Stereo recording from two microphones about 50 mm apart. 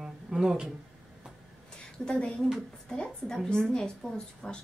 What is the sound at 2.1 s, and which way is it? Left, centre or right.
A woman's voice, left.